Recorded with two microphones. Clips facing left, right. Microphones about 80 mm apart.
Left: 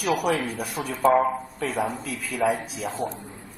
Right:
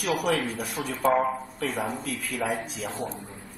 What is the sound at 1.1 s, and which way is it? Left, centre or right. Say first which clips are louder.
Speech: left 2 dB; centre.